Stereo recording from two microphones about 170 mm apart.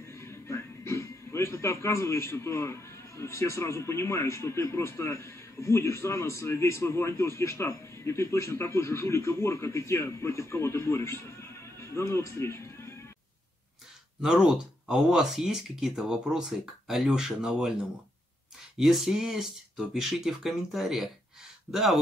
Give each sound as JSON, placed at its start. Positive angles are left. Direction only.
{"t": 0.0, "sound": "speech", "side_deg": 15}
{"t": 14.2, "sound": "speech", "side_deg": -5}
{"t": 18.8, "sound": "speech", "side_deg": 0}